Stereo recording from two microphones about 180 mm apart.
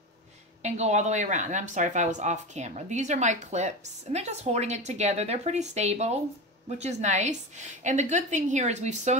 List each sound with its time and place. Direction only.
0.6 s speech: 40° right (ahead or behind)